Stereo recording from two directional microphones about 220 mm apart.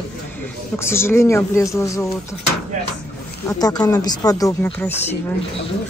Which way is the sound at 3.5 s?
15° left (ahead or behind).